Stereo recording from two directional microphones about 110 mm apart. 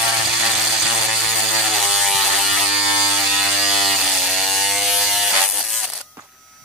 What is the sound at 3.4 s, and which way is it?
Ratchet, 5° right (ahead or behind).